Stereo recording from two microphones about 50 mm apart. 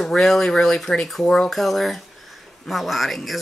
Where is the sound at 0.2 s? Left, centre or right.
Centre.